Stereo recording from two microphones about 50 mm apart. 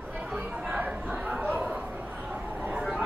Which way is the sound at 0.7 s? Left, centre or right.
Right.